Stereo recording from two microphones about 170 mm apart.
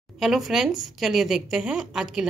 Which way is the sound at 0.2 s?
Centre (ahead or behind).